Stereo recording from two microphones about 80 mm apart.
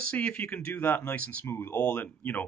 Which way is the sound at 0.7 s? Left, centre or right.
Left.